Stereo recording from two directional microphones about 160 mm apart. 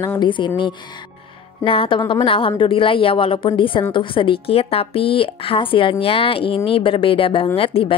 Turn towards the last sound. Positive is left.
turn(degrees=35)  # may be behind; listen again after turning